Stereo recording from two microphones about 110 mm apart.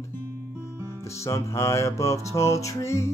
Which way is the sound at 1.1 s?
25° left (ahead or behind).